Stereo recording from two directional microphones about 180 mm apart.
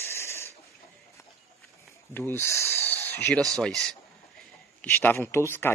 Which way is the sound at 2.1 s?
15° left (ahead or behind).